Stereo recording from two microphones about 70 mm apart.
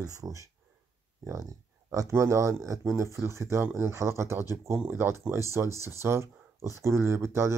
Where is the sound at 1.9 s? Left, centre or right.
Right.